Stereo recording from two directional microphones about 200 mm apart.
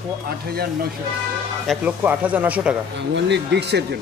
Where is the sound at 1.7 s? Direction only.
5° right (ahead or behind).